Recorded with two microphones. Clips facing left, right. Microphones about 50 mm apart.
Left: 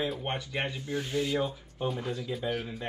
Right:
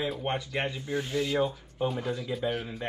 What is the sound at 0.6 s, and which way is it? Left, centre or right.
Speech, right.